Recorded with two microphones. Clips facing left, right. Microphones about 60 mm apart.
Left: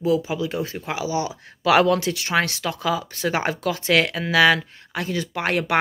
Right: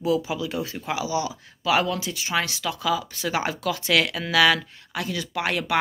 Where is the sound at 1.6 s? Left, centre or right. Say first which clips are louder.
Left 6 dB; left.